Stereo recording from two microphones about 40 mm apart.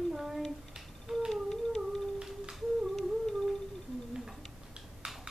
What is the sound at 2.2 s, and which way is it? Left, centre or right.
Humming, centre.